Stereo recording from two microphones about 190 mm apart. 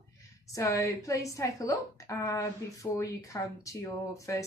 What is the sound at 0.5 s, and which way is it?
Speech, 15° left (ahead or behind).